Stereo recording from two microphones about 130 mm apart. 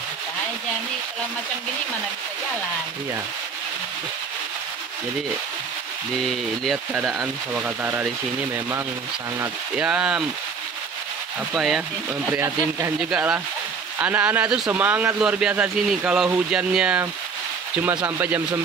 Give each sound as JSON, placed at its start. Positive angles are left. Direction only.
{"t": 7.6, "sound": "speech", "side_deg": -15}
{"t": 9.8, "sound": "speech", "side_deg": -5}
{"t": 11.5, "sound": "speech", "side_deg": -5}
{"t": 12.3, "sound": "speech", "side_deg": -20}
{"t": 13.0, "sound": "speech", "side_deg": -5}